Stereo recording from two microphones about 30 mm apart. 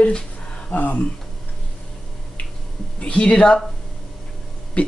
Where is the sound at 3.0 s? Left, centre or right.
Left.